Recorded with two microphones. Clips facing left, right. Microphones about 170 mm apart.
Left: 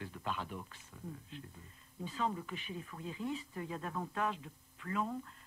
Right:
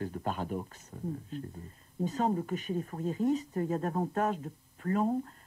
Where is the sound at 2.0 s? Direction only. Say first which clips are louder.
Right 8 dB; 45° right (ahead or behind).